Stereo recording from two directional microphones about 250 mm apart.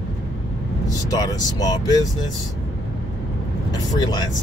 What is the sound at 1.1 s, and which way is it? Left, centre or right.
Speech, centre.